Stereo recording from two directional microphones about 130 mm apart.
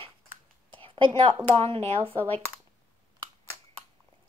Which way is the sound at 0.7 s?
40° right (ahead or behind).